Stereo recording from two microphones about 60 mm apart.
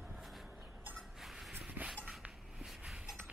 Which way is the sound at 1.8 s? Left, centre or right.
Right.